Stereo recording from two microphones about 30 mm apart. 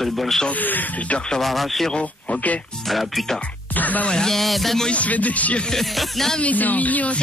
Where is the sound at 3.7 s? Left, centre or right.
Left.